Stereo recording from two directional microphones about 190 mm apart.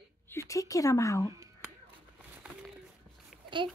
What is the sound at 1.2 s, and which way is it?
Speech, 15° right (ahead or behind).